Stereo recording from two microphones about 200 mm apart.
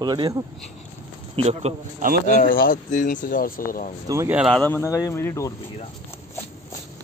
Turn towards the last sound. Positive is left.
turn(degrees=15)  # may be behind; listen again after turning